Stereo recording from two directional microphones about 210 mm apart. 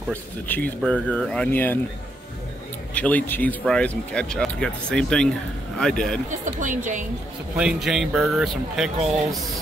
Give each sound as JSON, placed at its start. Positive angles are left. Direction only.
{"t": 0.1, "sound": "speech", "side_deg": 10}
{"t": 2.9, "sound": "speech", "side_deg": 5}
{"t": 6.4, "sound": "speech", "side_deg": -35}
{"t": 7.5, "sound": "speech", "side_deg": -5}